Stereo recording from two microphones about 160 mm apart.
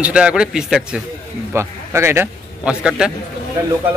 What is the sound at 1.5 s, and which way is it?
A man's voice, 15° right (ahead or behind).